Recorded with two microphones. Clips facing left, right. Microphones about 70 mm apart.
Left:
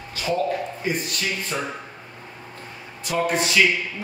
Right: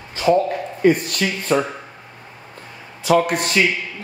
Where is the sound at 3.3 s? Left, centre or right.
Right.